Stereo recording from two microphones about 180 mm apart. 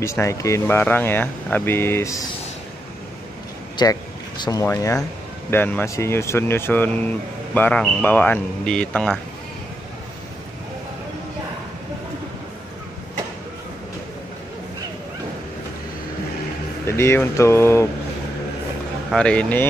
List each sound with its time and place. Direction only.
0.0 s speech: 15° left (ahead or behind)
3.7 s speech: 20° left (ahead or behind); by 9.2 s 5° left (ahead or behind)
16.8 s speech: 15° left (ahead or behind)
19.1 s speech: 5° left (ahead or behind)